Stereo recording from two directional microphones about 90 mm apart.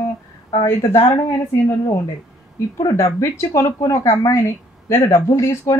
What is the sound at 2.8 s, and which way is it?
Speech, 35° left (ahead or behind).